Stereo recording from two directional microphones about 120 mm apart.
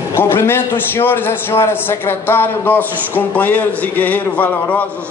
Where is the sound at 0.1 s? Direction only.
20° left (ahead or behind).